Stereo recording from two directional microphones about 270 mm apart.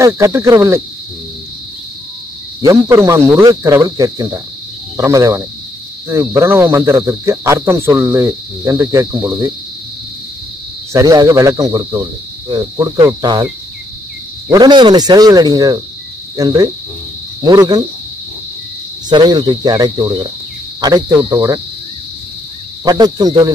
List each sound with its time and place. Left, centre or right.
0.0 s cricket: centre
2.6 s cricket: centre
10.9 s cricket: centre
14.5 s cricket: centre
19.0 s cricket: centre
22.8 s cricket: centre